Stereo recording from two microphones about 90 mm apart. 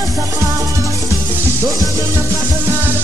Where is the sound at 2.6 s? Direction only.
20° right (ahead or behind).